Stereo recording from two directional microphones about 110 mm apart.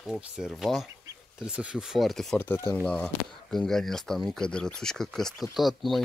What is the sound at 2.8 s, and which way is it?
Speech, 5° left (ahead or behind).